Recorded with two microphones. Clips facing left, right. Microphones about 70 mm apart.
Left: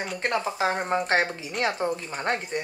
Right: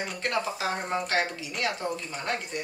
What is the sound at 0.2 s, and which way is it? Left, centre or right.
Speech, left.